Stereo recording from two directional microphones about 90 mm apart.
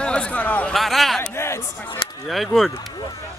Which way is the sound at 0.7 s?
Centre (ahead or behind).